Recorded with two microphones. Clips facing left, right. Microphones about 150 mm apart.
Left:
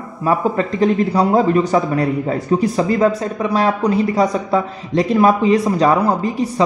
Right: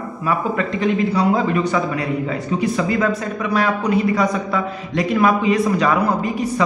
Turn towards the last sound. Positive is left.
turn(degrees=35)  # may be behind; listen again after turning